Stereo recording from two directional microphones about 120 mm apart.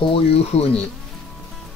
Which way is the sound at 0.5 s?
65° left (ahead or behind).